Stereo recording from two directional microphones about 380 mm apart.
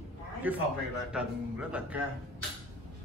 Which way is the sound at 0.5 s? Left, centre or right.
Centre.